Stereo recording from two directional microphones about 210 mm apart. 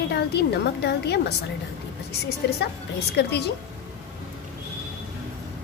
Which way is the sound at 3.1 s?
50° left (ahead or behind).